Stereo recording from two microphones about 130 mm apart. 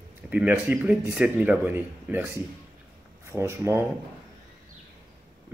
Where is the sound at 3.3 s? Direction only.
20° right (ahead or behind).